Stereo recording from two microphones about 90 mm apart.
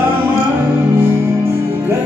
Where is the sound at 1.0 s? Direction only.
25° right (ahead or behind).